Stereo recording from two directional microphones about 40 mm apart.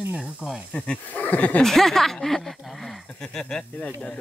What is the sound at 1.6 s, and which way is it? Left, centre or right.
Speech, centre.